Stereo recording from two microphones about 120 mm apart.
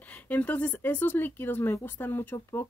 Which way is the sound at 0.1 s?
15° left (ahead or behind).